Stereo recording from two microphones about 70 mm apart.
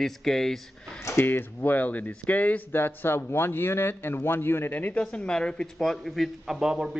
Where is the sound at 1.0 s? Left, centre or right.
Left.